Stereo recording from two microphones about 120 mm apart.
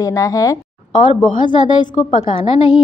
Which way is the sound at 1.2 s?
40° left (ahead or behind).